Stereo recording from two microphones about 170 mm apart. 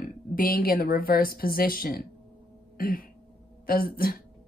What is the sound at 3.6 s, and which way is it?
Speech, 60° left (ahead or behind).